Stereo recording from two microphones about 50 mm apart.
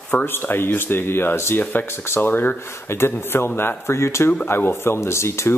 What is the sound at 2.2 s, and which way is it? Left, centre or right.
Speech, left.